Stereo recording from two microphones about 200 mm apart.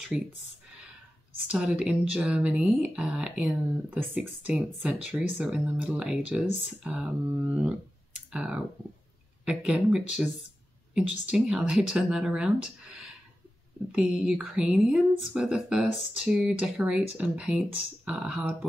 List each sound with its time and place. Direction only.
0.1 s speech: 5° right (ahead or behind)
1.5 s speech: 5° right (ahead or behind)